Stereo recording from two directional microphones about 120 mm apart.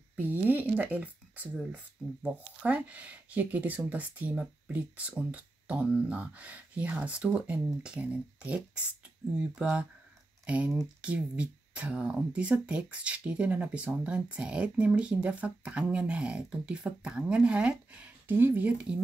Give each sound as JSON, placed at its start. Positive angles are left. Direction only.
{"t": 0.1, "sound": "speech", "side_deg": -15}